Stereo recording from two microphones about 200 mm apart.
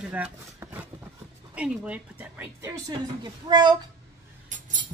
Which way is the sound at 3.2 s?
20° right (ahead or behind).